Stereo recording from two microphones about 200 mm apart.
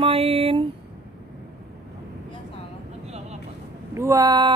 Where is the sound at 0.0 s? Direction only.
30° right (ahead or behind).